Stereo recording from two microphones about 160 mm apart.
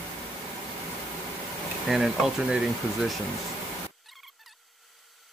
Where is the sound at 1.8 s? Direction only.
5° right (ahead or behind).